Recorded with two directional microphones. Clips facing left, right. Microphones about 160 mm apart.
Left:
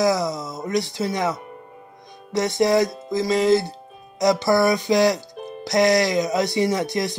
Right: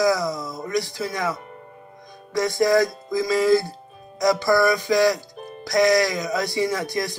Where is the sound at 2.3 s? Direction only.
25° left (ahead or behind).